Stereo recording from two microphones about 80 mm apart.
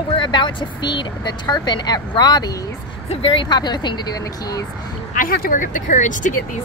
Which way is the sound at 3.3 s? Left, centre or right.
Left.